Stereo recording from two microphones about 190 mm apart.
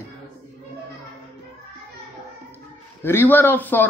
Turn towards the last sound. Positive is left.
turn(degrees=10)  # may be behind; listen again after turning